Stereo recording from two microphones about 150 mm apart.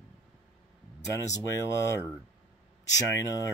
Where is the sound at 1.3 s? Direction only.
20° left (ahead or behind).